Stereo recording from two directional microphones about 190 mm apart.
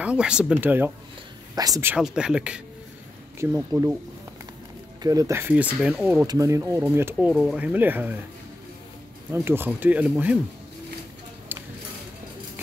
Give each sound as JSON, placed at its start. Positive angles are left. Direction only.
{"t": 0.0, "sound": "speech", "side_deg": -5}
{"t": 2.0, "sound": "speech", "side_deg": -5}
{"t": 5.0, "sound": "speech", "side_deg": -20}
{"t": 6.2, "sound": "speech", "side_deg": -15}
{"t": 9.3, "sound": "speech", "side_deg": -10}
{"t": 11.5, "sound": "a sound", "side_deg": -10}